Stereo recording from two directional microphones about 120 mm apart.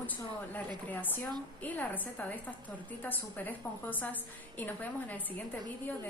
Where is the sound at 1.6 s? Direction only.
15° left (ahead or behind).